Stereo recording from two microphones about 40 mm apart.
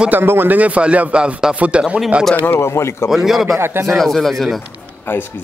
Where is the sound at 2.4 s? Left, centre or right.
Left.